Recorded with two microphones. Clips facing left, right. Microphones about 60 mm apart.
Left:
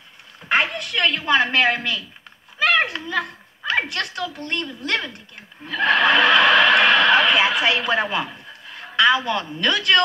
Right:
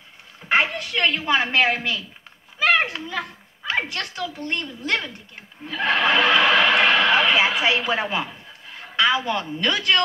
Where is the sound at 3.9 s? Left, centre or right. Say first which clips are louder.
Left 2 dB; right.